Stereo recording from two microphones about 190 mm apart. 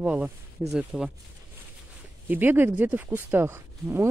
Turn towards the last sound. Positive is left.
turn(degrees=-15)  # may be behind; listen again after turning